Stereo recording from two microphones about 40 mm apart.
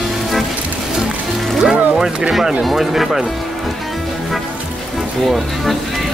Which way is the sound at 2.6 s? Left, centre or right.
Centre.